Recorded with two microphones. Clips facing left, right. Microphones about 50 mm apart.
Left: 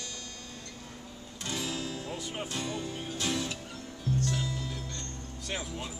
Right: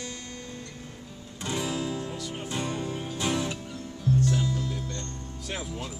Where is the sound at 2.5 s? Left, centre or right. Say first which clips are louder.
Right 8 dB; centre.